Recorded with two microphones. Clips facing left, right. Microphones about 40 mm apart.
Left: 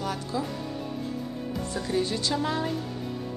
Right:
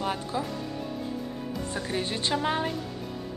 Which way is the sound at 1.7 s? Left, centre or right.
Right.